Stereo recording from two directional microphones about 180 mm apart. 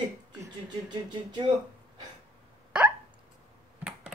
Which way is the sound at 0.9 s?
25° right (ahead or behind).